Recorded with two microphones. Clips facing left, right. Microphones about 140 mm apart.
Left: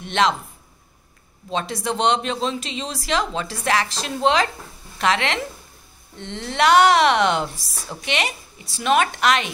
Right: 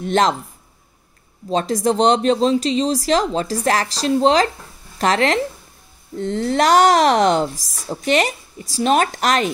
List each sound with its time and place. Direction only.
0.0 s speech: 40° right (ahead or behind)
1.5 s speech: 40° right (ahead or behind)